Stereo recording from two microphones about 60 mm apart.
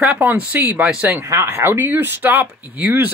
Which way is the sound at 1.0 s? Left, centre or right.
Right.